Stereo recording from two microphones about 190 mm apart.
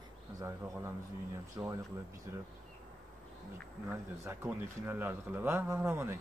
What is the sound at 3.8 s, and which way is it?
Speech, 10° right (ahead or behind).